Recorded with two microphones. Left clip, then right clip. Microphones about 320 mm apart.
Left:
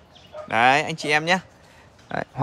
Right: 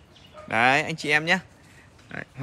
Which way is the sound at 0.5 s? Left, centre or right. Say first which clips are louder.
Left 3 dB; centre.